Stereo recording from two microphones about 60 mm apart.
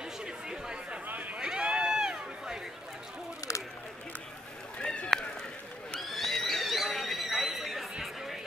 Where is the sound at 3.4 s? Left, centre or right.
Left.